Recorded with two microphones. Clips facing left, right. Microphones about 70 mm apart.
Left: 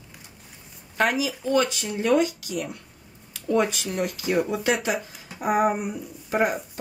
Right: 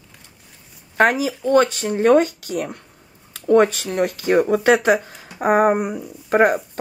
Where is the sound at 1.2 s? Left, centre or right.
Right.